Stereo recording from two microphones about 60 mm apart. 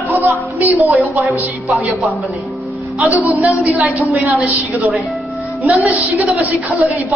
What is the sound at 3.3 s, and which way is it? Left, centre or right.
A woman's voice, right.